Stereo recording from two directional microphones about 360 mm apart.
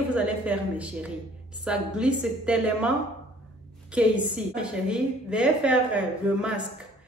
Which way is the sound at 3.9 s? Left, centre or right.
Centre.